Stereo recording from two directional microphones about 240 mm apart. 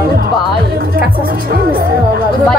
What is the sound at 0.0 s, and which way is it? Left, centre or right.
Music, right.